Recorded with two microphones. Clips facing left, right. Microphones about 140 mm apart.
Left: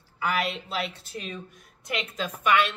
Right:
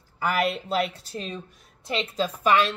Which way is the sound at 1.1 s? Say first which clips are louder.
Right 2 dB; 30° right (ahead or behind).